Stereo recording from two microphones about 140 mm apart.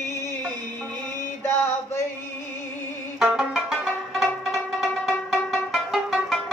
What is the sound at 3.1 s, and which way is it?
Music, 5° right (ahead or behind).